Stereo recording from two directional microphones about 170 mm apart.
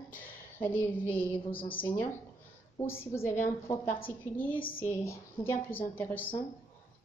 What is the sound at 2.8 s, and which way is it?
A woman's voice, 15° left (ahead or behind).